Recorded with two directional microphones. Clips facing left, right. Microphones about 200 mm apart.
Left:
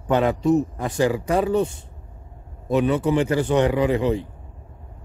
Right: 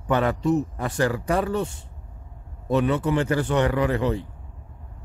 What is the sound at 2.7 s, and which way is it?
Speech, 15° left (ahead or behind).